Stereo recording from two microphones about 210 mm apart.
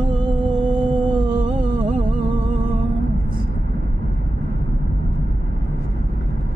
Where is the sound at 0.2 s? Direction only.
20° right (ahead or behind).